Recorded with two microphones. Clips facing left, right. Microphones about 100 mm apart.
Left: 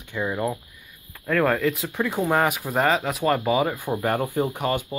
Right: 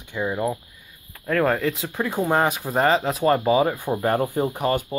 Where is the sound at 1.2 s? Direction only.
25° right (ahead or behind).